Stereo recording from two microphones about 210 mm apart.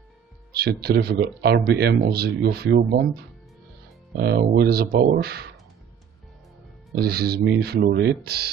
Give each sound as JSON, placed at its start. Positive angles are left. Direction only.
{"t": 0.5, "sound": "speech", "side_deg": -50}
{"t": 4.2, "sound": "speech", "side_deg": -50}
{"t": 7.0, "sound": "speech", "side_deg": -50}